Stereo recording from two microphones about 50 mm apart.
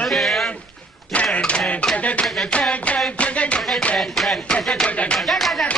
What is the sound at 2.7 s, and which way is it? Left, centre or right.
Speech, left.